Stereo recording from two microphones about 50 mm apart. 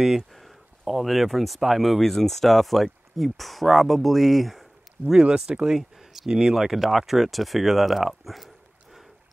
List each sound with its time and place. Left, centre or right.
0.0 s speech: centre
5.1 s speech: centre